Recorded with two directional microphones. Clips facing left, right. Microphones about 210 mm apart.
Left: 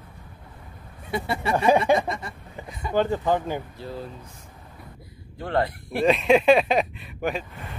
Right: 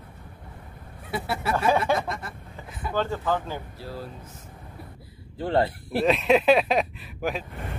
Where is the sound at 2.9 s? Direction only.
15° left (ahead or behind).